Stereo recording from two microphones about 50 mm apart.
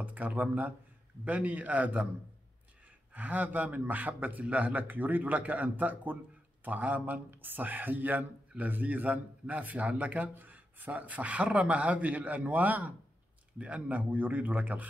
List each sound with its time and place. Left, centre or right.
0.0 s a man's voice: right
3.1 s a man's voice: right